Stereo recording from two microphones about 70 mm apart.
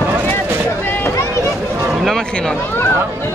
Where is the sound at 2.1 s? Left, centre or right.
Centre.